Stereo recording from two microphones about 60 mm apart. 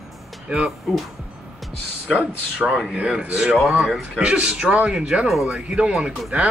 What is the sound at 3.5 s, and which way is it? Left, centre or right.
Speech, centre.